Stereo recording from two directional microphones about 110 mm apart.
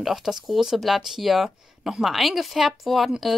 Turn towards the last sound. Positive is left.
turn(degrees=0)  # may be behind; listen again after turning